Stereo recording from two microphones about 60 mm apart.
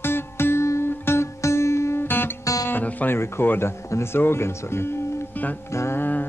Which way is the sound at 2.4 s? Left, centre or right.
Left.